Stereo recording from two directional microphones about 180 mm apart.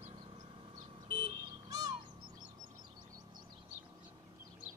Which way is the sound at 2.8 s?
25° right (ahead or behind).